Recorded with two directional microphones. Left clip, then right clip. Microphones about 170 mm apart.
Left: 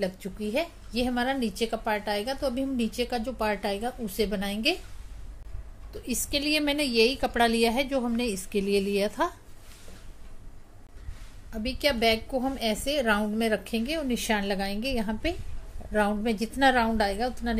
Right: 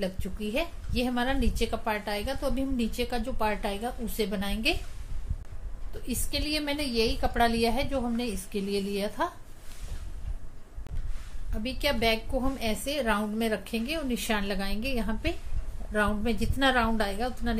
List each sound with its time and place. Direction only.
0.0 s a woman's voice: 25° left (ahead or behind)
6.3 s a woman's voice: 45° left (ahead or behind)
11.5 s a woman's voice: 30° left (ahead or behind)